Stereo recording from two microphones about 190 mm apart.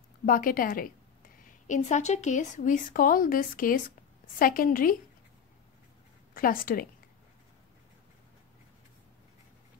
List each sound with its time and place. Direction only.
0.2 s a woman's voice: 45° left (ahead or behind)
6.3 s a woman's voice: 50° left (ahead or behind)